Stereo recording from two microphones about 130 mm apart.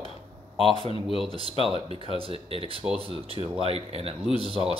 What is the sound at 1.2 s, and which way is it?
Speech, 45° right (ahead or behind).